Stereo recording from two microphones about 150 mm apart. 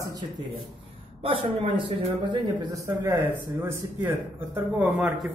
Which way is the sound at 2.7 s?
20° right (ahead or behind).